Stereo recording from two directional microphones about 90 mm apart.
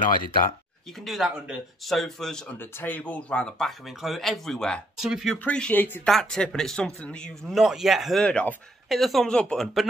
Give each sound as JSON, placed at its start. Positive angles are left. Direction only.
{"t": 1.0, "sound": "speech", "side_deg": -5}
{"t": 2.8, "sound": "speech", "side_deg": 20}
{"t": 4.9, "sound": "speech", "side_deg": -5}
{"t": 5.4, "sound": "speech", "side_deg": 15}
{"t": 6.0, "sound": "speech", "side_deg": 5}
{"t": 8.8, "sound": "speech", "side_deg": 0}